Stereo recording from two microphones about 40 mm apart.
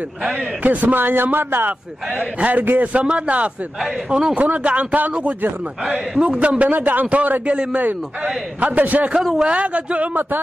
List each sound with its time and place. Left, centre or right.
0.3 s a man's voice: right
0.9 s a man's voice: right
2.5 s speech: right
2.9 s a man's voice: right
4.1 s a man's voice: centre
4.4 s speech: right
6.2 s a man's voice: right
6.7 s speech: right
8.5 s a man's voice: right
9.4 s a man's voice: right